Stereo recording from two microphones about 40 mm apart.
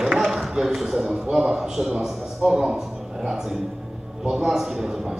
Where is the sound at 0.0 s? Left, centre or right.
Centre.